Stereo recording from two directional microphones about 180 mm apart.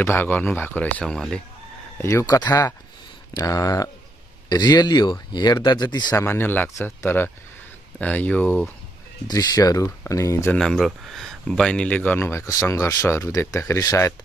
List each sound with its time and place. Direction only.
0.0 s speech: 10° left (ahead or behind)
2.0 s speech: 15° left (ahead or behind)
6.2 s speech: 10° left (ahead or behind)
9.3 s speech: 20° left (ahead or behind)